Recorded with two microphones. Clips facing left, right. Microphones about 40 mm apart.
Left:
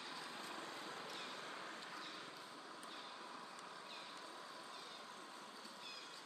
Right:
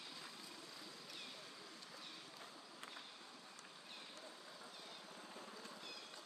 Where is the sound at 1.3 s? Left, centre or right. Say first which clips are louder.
Left 6 dB; left.